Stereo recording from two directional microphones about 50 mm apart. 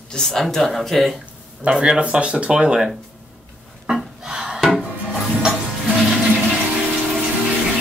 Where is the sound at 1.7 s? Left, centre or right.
Centre.